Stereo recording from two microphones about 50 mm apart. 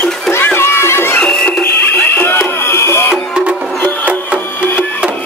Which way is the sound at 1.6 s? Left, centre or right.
Left.